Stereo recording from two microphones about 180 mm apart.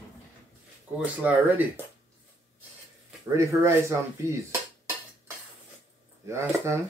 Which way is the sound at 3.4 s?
15° right (ahead or behind).